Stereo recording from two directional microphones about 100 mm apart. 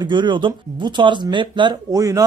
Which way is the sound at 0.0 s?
50° right (ahead or behind).